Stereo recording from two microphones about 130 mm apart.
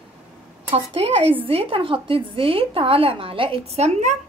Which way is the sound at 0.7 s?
50° right (ahead or behind).